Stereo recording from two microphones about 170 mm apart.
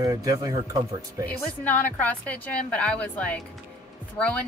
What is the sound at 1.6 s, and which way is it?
A woman's voice, 10° left (ahead or behind).